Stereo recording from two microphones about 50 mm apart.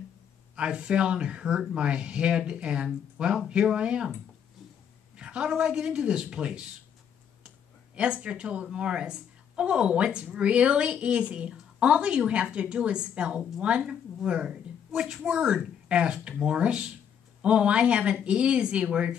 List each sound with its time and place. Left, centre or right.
0.6 s speech: centre
5.1 s a sound: right
5.6 s speech: centre
7.9 s speech: centre
14.9 s a woman's voice: centre